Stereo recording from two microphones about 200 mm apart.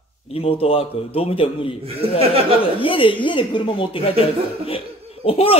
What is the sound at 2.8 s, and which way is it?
A man's voice, 25° left (ahead or behind).